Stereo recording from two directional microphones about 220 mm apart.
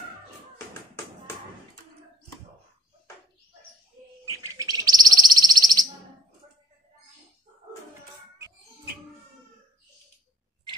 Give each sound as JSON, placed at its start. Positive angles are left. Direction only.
{"t": 4.3, "sound": "bird", "side_deg": -15}